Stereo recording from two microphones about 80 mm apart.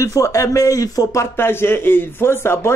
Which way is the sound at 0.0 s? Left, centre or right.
Left.